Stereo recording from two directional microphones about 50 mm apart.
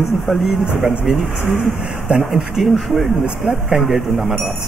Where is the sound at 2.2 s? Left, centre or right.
Centre.